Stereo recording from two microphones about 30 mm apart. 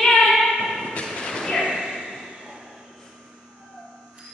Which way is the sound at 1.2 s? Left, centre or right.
Centre.